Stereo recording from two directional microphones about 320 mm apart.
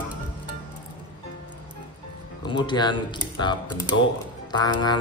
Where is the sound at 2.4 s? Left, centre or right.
Centre.